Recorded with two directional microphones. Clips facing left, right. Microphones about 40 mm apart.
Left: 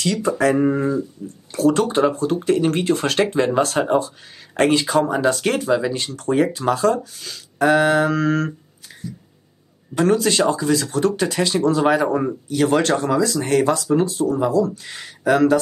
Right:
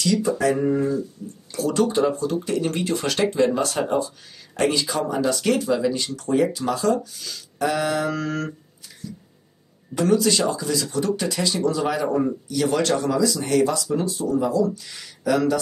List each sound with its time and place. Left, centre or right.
0.0 s speech: left
1.5 s speech: left
9.9 s speech: left